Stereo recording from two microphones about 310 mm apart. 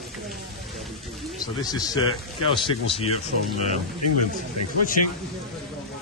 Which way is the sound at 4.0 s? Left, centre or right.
Left.